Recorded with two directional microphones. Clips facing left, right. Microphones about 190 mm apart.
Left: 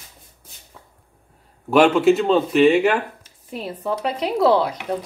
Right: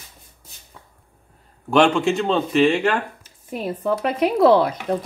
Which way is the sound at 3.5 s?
50° right (ahead or behind).